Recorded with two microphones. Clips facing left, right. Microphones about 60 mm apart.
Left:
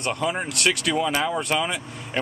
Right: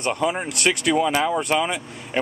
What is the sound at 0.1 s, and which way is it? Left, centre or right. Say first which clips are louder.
Speech: right 2 dB; centre.